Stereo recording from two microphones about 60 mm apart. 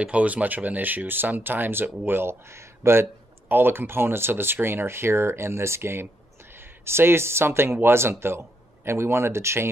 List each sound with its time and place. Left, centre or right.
0.0 s speech: right
3.4 s speech: right